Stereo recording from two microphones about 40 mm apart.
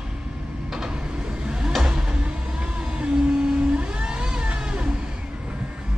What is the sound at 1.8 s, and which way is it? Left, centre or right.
Music, right.